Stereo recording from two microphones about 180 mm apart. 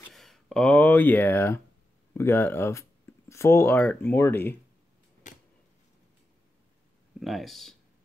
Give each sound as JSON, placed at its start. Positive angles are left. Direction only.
{"t": 0.1, "sound": "speech", "side_deg": 0}
{"t": 5.2, "sound": "a sound", "side_deg": 45}
{"t": 7.2, "sound": "speech", "side_deg": 0}